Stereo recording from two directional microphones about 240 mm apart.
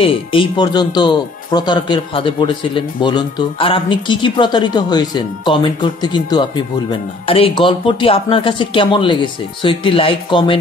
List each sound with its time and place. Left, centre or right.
0.0 s speech: left